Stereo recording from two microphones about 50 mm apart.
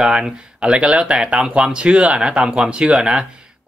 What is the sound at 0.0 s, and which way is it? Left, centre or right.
Speech, centre.